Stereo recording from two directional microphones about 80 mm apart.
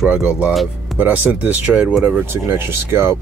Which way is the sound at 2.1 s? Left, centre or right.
Right.